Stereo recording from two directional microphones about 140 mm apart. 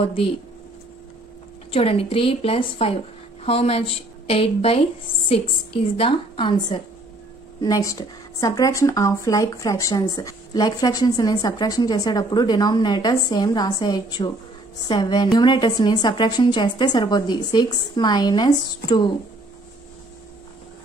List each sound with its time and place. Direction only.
0.0 s speech: 40° left (ahead or behind)
1.7 s a woman's voice: 45° left (ahead or behind)
7.6 s a woman's voice: 25° left (ahead or behind)